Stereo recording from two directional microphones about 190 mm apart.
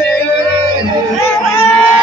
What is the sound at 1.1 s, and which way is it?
Music, 10° left (ahead or behind).